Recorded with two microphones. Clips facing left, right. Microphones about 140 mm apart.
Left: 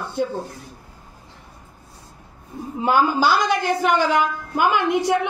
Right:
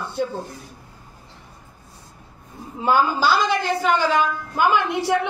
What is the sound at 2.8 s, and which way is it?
A woman's voice, 15° left (ahead or behind).